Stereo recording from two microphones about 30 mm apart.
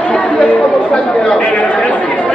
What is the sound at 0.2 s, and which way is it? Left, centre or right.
Chatter, left.